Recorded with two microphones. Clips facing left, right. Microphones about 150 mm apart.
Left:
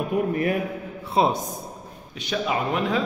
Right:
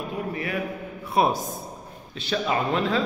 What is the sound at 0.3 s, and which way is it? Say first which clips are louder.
Speech: left 7 dB; 50° left (ahead or behind).